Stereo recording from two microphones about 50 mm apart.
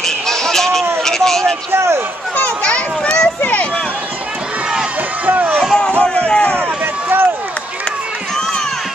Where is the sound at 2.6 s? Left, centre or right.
Left.